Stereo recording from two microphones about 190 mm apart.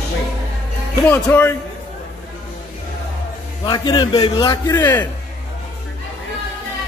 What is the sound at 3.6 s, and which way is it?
A man's voice, 25° left (ahead or behind).